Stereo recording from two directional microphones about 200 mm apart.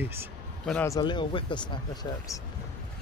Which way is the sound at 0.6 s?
10° left (ahead or behind).